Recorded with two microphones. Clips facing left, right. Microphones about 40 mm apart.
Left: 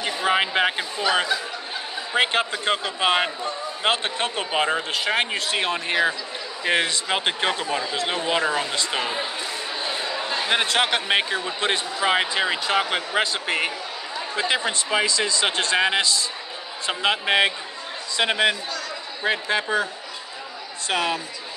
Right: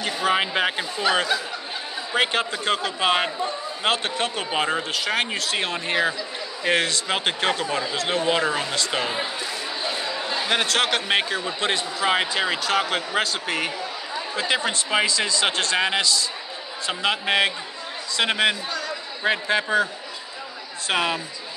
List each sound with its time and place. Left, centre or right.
0.0 s a man's voice: centre
20.9 s speech: centre